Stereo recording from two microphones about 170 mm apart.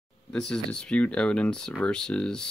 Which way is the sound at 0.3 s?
5° left (ahead or behind).